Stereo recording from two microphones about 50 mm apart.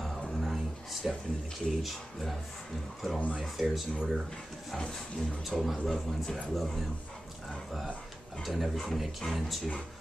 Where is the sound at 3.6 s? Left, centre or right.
Centre.